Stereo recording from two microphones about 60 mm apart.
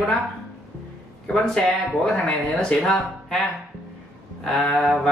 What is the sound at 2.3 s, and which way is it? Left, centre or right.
Speech, centre.